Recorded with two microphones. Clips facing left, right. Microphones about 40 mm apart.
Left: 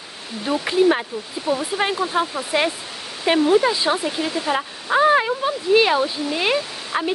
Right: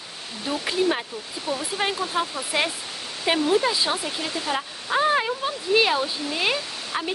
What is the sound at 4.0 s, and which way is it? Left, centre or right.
Speech, centre.